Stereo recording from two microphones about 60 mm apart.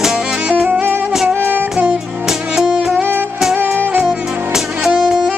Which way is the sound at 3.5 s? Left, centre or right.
Right.